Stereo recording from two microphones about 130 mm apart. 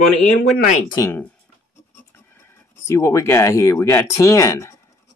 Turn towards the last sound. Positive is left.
turn(degrees=25)  # may be behind; listen again after turning